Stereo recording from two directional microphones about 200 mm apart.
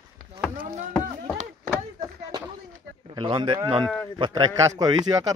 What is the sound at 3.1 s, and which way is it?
Speech, 25° right (ahead or behind).